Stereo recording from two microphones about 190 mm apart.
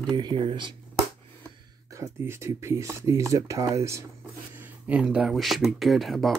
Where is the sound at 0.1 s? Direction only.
25° right (ahead or behind).